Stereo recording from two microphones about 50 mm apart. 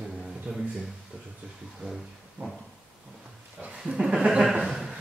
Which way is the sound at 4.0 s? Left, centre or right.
Centre.